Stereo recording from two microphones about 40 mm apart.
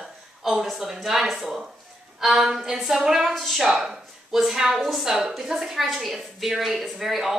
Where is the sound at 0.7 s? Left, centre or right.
Centre.